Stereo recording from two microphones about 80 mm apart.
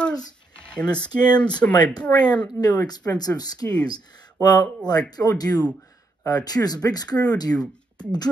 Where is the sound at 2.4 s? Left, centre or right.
Left.